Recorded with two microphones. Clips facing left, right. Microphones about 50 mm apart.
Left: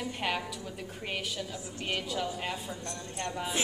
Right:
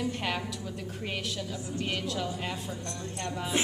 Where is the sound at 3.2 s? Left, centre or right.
Centre.